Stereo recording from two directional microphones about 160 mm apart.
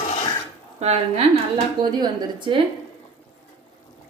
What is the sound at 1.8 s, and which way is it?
Speech, 25° right (ahead or behind).